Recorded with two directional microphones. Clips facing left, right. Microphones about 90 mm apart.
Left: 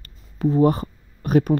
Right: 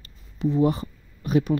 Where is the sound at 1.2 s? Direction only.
50° left (ahead or behind).